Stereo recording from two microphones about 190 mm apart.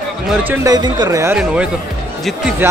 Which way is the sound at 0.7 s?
20° right (ahead or behind).